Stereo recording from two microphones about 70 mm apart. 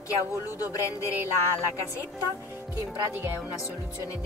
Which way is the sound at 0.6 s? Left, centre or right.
Left.